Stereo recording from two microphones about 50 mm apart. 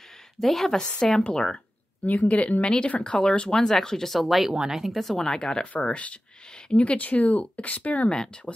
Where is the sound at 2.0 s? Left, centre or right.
Left; by 5.0 s centre.